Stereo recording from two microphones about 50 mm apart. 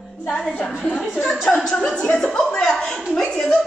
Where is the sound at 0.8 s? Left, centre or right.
Centre.